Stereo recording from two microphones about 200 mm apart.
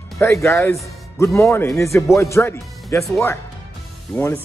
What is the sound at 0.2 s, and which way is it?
A man's voice, 15° left (ahead or behind).